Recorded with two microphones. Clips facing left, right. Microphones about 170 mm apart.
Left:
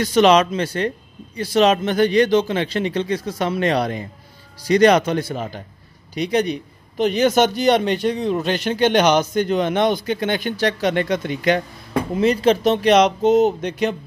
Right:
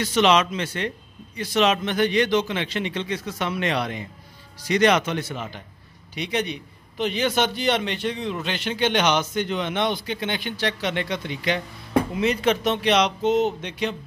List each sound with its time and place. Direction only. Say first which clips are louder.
0.0 s a man's voice: left 5 dB; 40° left (ahead or behind)
12.1 s speech: left 5 dB; 40° left (ahead or behind)